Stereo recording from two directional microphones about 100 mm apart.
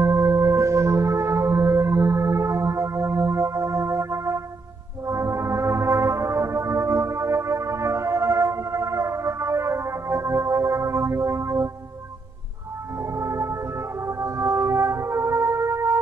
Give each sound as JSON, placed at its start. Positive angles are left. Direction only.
{"t": 0.0, "sound": "music", "side_deg": -45}
{"t": 0.6, "sound": "singing bowl", "side_deg": -30}
{"t": 1.6, "sound": "music", "side_deg": -40}
{"t": 5.0, "sound": "brass instrument", "side_deg": -30}
{"t": 13.0, "sound": "music", "side_deg": -30}